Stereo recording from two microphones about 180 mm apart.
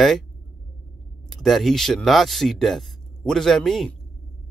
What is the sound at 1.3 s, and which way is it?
Speech, centre (ahead or behind).